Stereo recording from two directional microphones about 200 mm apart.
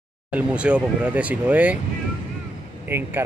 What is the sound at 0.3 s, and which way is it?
Speech, 5° right (ahead or behind).